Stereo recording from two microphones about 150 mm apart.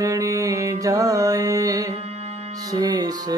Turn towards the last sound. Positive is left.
turn(degrees=-25)  # may be behind; listen again after turning